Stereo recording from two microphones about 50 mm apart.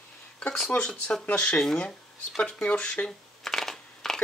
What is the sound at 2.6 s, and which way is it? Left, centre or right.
Speech, left.